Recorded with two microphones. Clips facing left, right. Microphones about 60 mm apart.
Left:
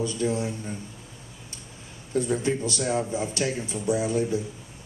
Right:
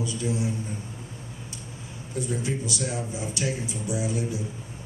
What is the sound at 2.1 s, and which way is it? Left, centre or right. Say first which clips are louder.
A man's voice: left 5 dB; left.